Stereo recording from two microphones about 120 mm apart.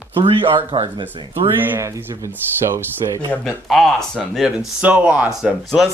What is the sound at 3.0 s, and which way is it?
Speech, 35° right (ahead or behind).